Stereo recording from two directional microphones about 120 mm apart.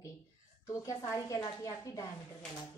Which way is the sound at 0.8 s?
30° left (ahead or behind).